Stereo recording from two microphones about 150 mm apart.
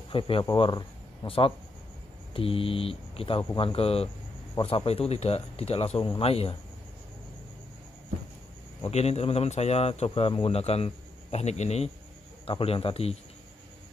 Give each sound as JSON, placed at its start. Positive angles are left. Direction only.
{"t": 0.1, "sound": "a man's voice", "side_deg": 35}
{"t": 8.8, "sound": "a man's voice", "side_deg": 45}